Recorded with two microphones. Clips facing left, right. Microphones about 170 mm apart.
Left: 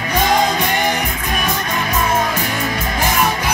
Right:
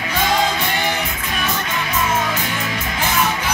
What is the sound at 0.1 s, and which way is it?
Music, 40° left (ahead or behind).